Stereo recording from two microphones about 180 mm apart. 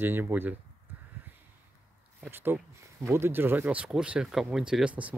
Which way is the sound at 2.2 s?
10° right (ahead or behind).